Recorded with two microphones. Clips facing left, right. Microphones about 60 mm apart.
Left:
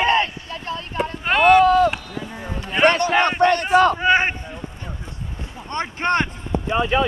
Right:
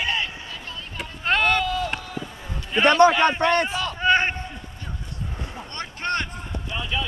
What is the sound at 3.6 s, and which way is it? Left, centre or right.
Speech, left.